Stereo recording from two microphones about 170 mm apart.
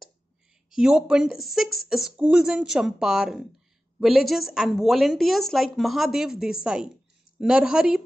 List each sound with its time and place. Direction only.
0.7 s a woman's voice: 5° right (ahead or behind)